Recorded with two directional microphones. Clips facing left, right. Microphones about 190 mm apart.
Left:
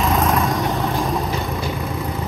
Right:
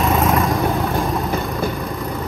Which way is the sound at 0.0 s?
Centre (ahead or behind).